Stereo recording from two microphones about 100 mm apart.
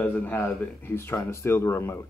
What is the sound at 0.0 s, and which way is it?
Speech, 20° left (ahead or behind).